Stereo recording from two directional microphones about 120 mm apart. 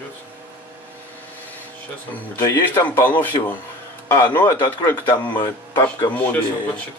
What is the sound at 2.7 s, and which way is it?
Speech, 15° left (ahead or behind).